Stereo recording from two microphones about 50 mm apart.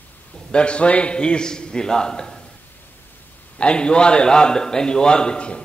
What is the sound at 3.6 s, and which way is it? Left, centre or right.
A man's voice, centre.